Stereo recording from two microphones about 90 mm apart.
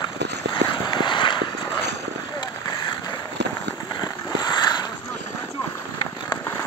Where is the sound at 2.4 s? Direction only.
50° left (ahead or behind).